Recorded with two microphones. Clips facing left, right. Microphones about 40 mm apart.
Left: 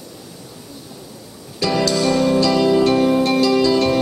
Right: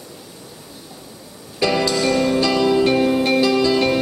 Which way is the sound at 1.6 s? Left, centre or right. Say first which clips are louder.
Even; centre.